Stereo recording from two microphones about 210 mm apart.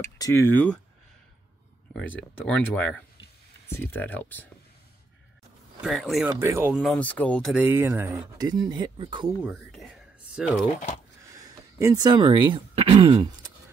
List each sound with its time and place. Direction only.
0.2 s speech: 10° left (ahead or behind)
2.0 s speech: 5° left (ahead or behind)
5.8 s speech: centre (ahead or behind)
6.2 s speech: 10° right (ahead or behind)
6.8 s speech: 5° left (ahead or behind)
7.5 s speech: 10° right (ahead or behind)
9.4 s speech: centre (ahead or behind)
11.2 s speech: 15° right (ahead or behind)